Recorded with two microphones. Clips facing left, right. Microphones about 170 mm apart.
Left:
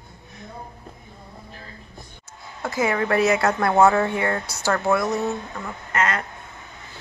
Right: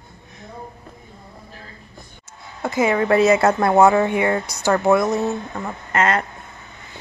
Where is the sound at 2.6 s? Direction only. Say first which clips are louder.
Right 4 dB; 20° right (ahead or behind).